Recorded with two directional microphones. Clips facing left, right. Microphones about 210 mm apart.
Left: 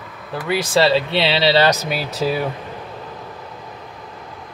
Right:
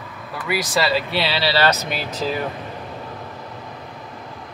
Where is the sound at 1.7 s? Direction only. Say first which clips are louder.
Left 2 dB; 5° left (ahead or behind).